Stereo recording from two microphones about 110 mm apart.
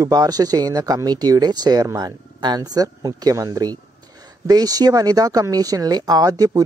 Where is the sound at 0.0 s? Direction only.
35° right (ahead or behind).